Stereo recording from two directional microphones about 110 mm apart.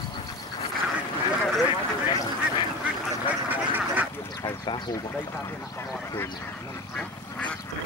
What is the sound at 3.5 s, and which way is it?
Duck, 15° right (ahead or behind).